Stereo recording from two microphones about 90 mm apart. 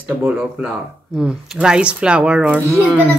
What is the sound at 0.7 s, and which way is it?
Speech, 5° right (ahead or behind).